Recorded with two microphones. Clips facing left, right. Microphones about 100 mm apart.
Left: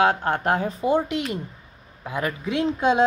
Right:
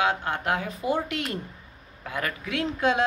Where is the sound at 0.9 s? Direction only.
20° left (ahead or behind).